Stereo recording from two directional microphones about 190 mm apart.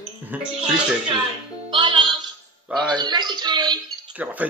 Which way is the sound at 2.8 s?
25° right (ahead or behind).